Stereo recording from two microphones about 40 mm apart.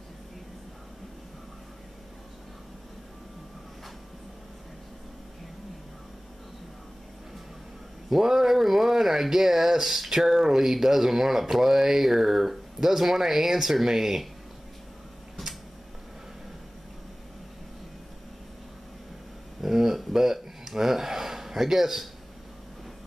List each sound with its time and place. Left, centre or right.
8.1 s speech: centre
15.4 s tick-tock: centre
19.6 s a sound: centre